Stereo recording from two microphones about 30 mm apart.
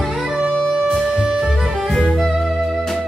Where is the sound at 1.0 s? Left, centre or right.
Right.